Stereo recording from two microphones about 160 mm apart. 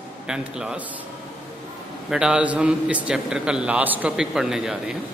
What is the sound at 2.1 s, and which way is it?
Speech, 5° right (ahead or behind).